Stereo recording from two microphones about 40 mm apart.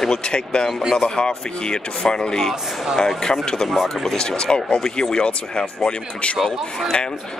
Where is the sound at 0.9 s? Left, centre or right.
Centre.